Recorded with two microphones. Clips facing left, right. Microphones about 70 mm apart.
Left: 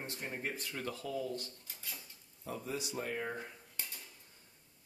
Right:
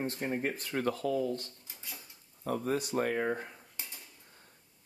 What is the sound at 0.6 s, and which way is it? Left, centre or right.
Speech, right.